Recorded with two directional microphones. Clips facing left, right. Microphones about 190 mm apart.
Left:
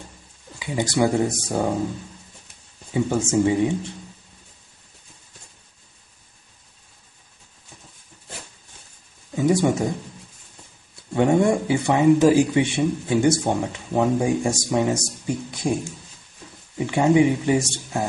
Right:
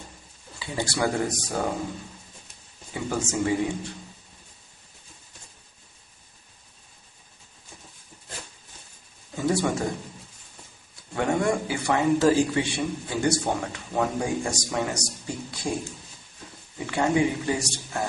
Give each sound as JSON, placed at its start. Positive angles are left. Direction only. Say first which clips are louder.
{"t": 0.6, "sound": "speech", "louder": "left 6 dB", "side_deg": 20}
{"t": 2.9, "sound": "speech", "louder": "left 7 dB", "side_deg": 25}
{"t": 9.3, "sound": "speech", "louder": "left 5 dB", "side_deg": 20}
{"t": 11.1, "sound": "speech", "louder": "left 6 dB", "side_deg": 20}